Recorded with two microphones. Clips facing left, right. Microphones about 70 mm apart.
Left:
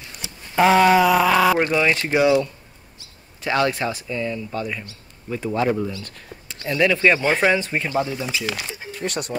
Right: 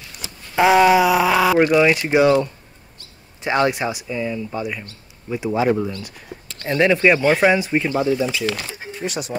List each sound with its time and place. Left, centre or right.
0.6 s speech: centre
1.6 s speech: centre
2.2 s speech: right
3.4 s speech: right
7.0 s speech: centre
9.0 s speech: centre